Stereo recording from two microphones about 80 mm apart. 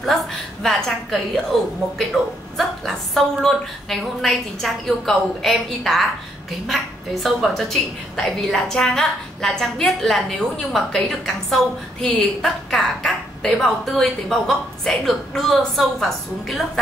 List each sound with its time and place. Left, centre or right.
0.0 s a woman's voice: centre
7.2 s a woman's voice: centre